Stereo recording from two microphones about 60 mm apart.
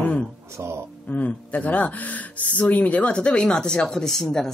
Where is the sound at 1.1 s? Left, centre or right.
Left.